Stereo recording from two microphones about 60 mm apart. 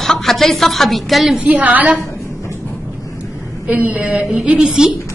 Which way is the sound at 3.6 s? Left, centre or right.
Right.